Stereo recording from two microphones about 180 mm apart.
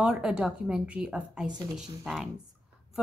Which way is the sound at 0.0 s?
5° right (ahead or behind).